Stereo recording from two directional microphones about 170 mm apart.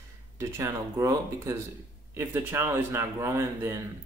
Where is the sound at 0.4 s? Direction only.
15° right (ahead or behind).